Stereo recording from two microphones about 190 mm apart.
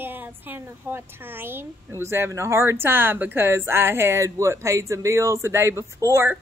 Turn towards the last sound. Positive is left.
turn(degrees=-15)  # may be behind; listen again after turning